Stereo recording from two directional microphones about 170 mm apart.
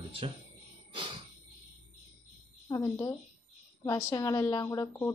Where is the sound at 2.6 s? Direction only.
20° left (ahead or behind).